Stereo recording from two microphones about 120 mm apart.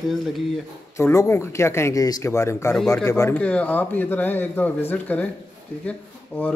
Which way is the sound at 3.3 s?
10° left (ahead or behind).